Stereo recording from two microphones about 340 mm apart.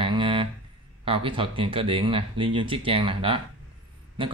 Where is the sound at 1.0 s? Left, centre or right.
Centre.